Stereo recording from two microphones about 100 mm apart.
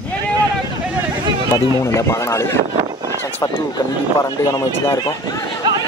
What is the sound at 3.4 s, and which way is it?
Speech, 40° left (ahead or behind).